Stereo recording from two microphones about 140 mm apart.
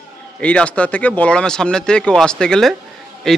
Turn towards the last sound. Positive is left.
turn(degrees=5)  # may be behind; listen again after turning